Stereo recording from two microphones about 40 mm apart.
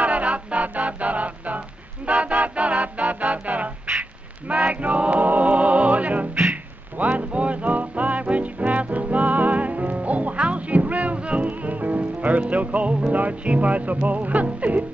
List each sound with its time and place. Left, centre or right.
0.0 s music: right